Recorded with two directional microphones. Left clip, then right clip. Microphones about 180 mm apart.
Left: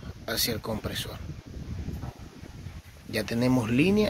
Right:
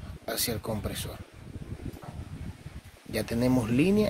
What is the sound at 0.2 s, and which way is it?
Speech, 5° right (ahead or behind).